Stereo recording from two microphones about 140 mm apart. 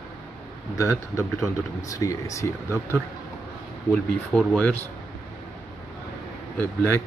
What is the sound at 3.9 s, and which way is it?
Speech, 5° left (ahead or behind).